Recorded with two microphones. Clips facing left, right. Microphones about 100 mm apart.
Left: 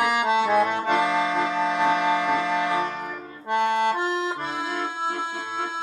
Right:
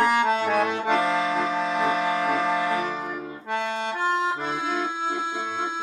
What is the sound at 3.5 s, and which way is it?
Accordion, 60° left (ahead or behind).